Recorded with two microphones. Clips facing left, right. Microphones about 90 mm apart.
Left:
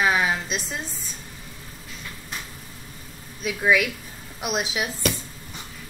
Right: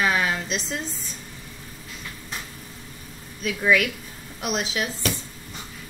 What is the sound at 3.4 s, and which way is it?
A woman's voice, 10° left (ahead or behind).